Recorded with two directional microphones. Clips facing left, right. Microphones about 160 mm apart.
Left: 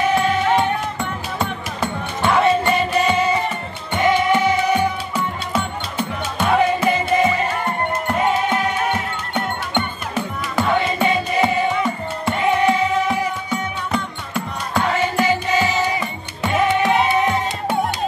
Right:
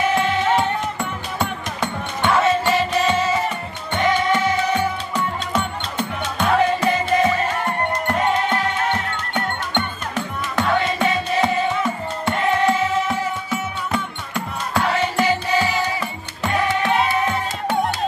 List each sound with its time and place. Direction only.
0.1 s music: centre (ahead or behind)
3.9 s music: 10° left (ahead or behind)
15.6 s music: 15° left (ahead or behind)